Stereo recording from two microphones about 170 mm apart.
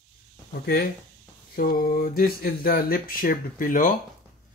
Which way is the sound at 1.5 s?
60° left (ahead or behind).